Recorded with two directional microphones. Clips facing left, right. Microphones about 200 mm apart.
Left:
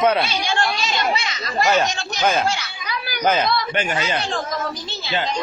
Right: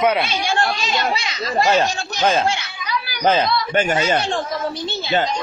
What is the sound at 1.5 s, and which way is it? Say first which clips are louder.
Speech: right 2 dB; 30° right (ahead or behind).